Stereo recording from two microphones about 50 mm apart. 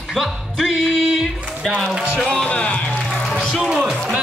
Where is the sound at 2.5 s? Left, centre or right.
Left.